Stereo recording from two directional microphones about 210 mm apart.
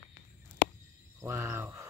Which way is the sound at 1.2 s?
15° right (ahead or behind).